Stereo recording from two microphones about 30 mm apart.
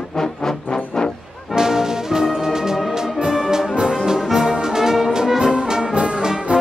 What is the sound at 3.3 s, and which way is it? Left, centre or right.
Brass instrument, centre.